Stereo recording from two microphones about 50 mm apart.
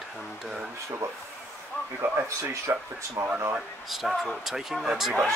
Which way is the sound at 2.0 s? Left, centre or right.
Right.